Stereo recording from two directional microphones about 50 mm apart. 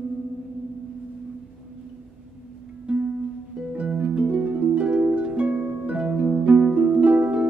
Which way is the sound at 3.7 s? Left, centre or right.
Right.